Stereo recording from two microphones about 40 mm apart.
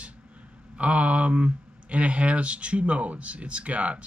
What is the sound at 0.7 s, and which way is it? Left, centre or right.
Speech, right.